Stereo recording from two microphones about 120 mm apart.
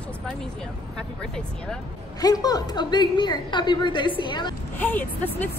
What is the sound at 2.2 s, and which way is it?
A woman's voice, 35° left (ahead or behind).